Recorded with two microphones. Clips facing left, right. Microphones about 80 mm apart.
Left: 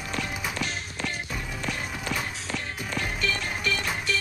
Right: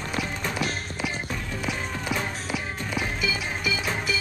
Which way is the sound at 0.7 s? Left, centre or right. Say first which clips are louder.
Right 3 dB; right.